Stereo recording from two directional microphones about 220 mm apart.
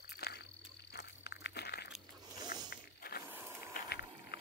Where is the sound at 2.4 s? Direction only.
20° right (ahead or behind).